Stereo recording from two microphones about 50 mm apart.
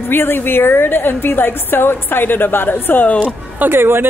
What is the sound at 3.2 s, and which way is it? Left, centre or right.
Speech, right.